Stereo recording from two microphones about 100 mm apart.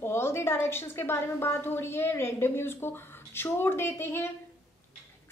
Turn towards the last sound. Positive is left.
turn(degrees=25)  # may be behind; listen again after turning